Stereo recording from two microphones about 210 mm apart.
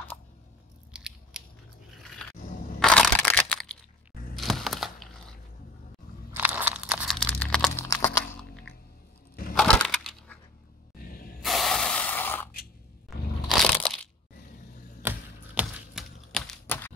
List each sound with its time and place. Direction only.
0.9 s scissors: 5° right (ahead or behind)
2.8 s crushing: 5° left (ahead or behind)
4.4 s crack: centre (ahead or behind)
6.3 s a sound: 10° right (ahead or behind)
7.2 s crumpling: 5° left (ahead or behind)
8.4 s music: 5° left (ahead or behind)
9.6 s crushing: 5° left (ahead or behind)
11.4 s spray: centre (ahead or behind)
13.5 s crushing: 5° left (ahead or behind)
15.0 s a sound: 10° right (ahead or behind); by 16.9 s 10° left (ahead or behind)